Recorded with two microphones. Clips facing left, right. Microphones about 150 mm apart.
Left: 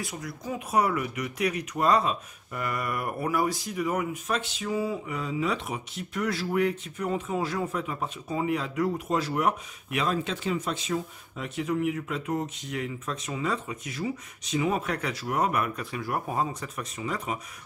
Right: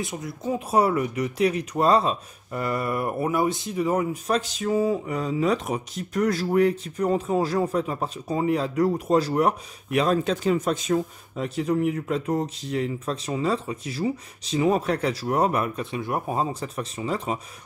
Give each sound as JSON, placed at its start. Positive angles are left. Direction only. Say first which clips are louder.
{"t": 0.0, "sound": "speech", "louder": "right 5 dB", "side_deg": -25}